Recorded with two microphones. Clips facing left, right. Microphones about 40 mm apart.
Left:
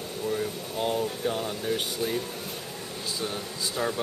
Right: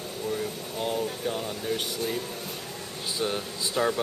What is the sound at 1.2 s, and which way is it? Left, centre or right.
Speech, centre.